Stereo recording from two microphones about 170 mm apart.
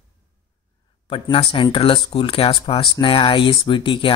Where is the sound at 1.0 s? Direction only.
30° left (ahead or behind).